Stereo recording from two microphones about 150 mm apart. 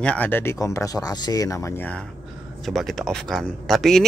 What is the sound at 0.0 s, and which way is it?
Speech, 10° left (ahead or behind).